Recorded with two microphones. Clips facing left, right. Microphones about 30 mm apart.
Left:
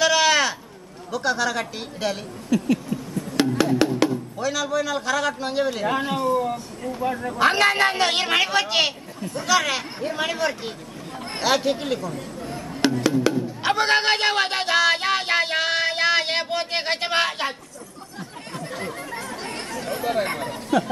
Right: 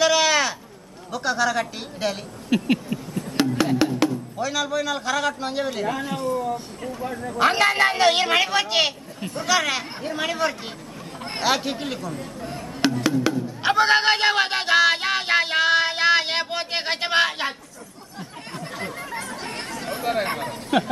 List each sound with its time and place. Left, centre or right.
0.0 s a sound: centre
1.1 s speech: centre
2.5 s a sound: right
3.3 s music: centre
4.4 s speech: centre
6.9 s speech: left
7.3 s speech: centre
11.2 s music: centre
13.6 s a sound: centre
18.5 s chatter: centre
20.2 s speech: centre
20.7 s speech: right